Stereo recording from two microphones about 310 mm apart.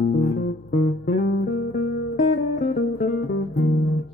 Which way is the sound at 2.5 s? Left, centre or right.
Left.